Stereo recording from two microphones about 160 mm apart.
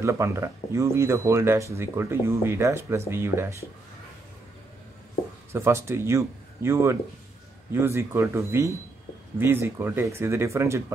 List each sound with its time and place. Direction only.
0.0 s speech: 20° right (ahead or behind)
5.5 s speech: 15° right (ahead or behind)